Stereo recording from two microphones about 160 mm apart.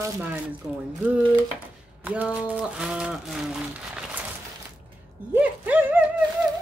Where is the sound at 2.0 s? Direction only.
10° right (ahead or behind).